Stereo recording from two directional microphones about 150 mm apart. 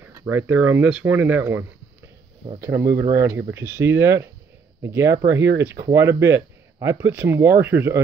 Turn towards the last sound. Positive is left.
turn(degrees=-15)  # may be behind; listen again after turning